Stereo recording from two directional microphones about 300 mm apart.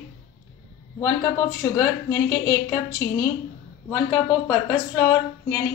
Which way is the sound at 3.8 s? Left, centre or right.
Centre.